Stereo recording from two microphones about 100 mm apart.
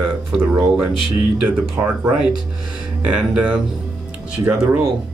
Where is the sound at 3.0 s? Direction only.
10° right (ahead or behind).